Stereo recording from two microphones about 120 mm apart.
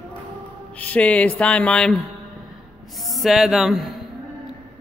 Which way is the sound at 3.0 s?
Centre (ahead or behind).